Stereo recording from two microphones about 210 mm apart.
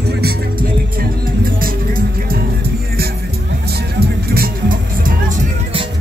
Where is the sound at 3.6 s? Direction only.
50° right (ahead or behind).